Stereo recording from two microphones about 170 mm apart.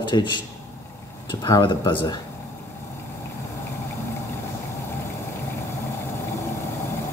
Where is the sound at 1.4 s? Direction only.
25° left (ahead or behind).